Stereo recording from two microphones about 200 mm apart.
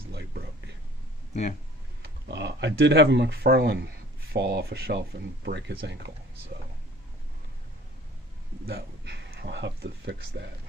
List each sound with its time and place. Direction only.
0.1 s a sound: 55° right (ahead or behind)
2.3 s speech: 65° right (ahead or behind)
8.6 s speech: 55° right (ahead or behind)